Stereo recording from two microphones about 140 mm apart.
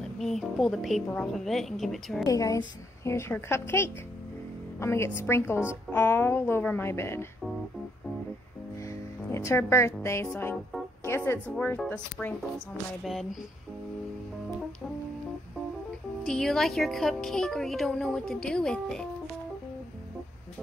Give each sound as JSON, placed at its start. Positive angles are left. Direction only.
{"t": 0.2, "sound": "speech", "side_deg": 0}
{"t": 2.2, "sound": "a woman's voice", "side_deg": 25}
{"t": 9.3, "sound": "a woman's voice", "side_deg": 20}
{"t": 13.0, "sound": "speech", "side_deg": 0}
{"t": 16.3, "sound": "speech", "side_deg": 5}